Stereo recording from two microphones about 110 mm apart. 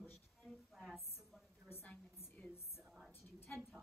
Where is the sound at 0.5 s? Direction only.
Centre (ahead or behind).